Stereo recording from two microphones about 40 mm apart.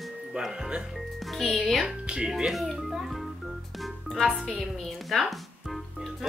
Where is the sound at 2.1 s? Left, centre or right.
Right.